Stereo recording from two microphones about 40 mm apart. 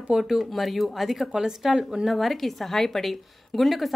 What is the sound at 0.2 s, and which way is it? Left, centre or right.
A woman's voice, centre.